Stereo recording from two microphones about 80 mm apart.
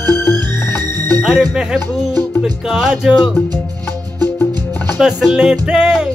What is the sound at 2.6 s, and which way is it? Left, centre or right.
Music, centre.